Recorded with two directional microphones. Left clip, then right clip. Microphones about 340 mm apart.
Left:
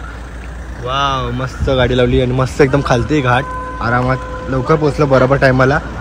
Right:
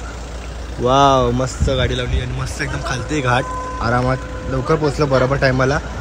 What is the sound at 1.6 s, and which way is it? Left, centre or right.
Speech, centre.